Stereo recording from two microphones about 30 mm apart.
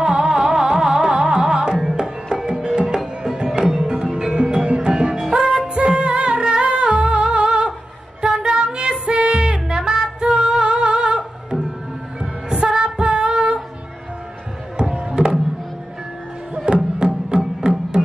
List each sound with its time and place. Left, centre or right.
0.0 s music: right
2.4 s music: right
6.6 s humming: right
8.2 s music: right
12.5 s music: centre
12.8 s music: right
14.8 s music: right
16.5 s music: right